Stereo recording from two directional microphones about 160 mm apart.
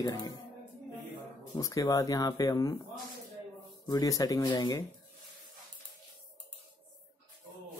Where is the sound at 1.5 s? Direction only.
20° left (ahead or behind).